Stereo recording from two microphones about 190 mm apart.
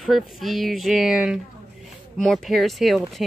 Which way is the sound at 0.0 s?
Centre (ahead or behind).